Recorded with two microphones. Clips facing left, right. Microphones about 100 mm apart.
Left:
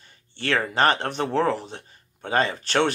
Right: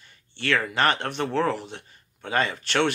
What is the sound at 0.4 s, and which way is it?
Speech, 35° left (ahead or behind).